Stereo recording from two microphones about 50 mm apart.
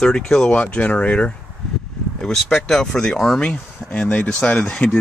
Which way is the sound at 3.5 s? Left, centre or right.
Left.